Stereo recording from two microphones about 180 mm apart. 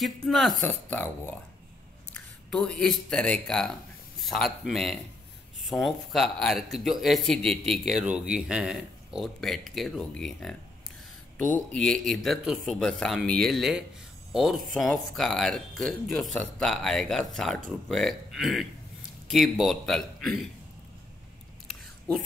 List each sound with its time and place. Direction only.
0.0 s speech: centre (ahead or behind)
21.6 s chewing: centre (ahead or behind)